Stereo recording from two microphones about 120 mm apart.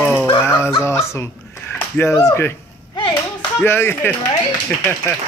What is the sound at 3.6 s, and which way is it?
Speech, 20° left (ahead or behind).